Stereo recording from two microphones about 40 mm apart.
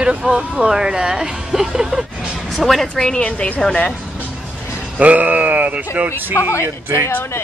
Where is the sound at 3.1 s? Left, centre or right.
Left.